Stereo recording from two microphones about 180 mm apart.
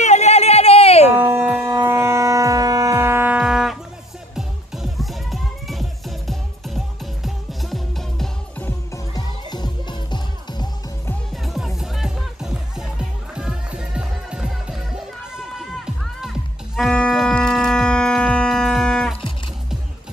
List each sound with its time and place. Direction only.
0.0 s a sound: 40° left (ahead or behind)
1.1 s shofar: 10° right (ahead or behind)
3.3 s music: centre (ahead or behind); by 10.7 s 25° left (ahead or behind)
11.4 s music: centre (ahead or behind)